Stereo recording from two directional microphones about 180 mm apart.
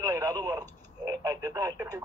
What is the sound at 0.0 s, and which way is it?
Telephone, 20° right (ahead or behind).